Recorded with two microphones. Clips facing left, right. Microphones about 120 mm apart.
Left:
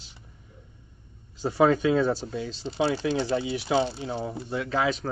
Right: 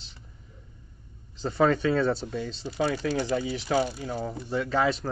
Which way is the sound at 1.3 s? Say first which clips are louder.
Left 2 dB; 10° left (ahead or behind).